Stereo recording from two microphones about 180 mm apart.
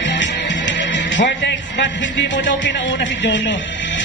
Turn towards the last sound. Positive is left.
turn(degrees=80)